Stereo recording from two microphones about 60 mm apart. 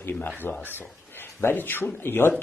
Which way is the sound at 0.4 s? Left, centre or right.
Left.